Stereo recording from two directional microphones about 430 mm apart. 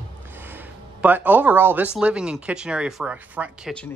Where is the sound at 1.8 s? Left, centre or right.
Centre.